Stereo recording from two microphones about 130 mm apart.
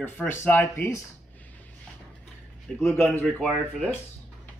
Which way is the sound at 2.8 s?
20° left (ahead or behind).